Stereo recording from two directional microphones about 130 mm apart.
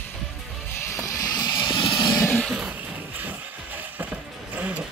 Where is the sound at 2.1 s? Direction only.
25° left (ahead or behind).